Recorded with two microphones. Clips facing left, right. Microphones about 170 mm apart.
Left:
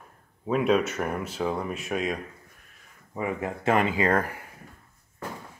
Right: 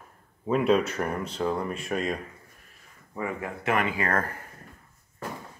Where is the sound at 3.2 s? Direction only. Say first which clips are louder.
Left 3 dB; 20° left (ahead or behind).